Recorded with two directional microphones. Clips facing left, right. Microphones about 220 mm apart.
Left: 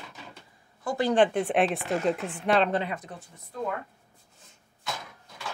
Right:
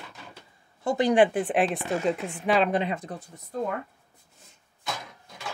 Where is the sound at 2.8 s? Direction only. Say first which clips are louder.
Right 3 dB; 20° right (ahead or behind).